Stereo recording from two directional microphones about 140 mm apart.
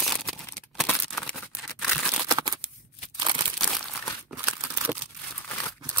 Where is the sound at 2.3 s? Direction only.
30° right (ahead or behind).